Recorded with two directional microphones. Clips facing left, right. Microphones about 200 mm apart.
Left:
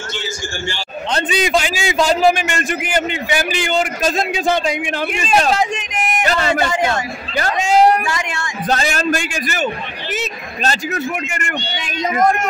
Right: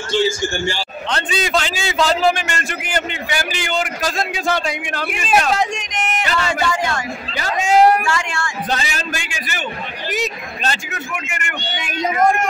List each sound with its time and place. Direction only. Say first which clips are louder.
1.1 s a man's voice: left 3 dB; 15° left (ahead or behind)
5.5 s speech: left 2 dB; centre (ahead or behind)
6.2 s a man's voice: left 5 dB; 40° left (ahead or behind)
6.7 s a man's voice: left 3 dB; 25° left (ahead or behind)
7.7 s a sound: even; 5° right (ahead or behind)
8.1 s a man's voice: right 1 dB; 20° left (ahead or behind)
8.6 s a man's voice: left 10 dB; 45° left (ahead or behind)
11.8 s speech: even; 10° right (ahead or behind)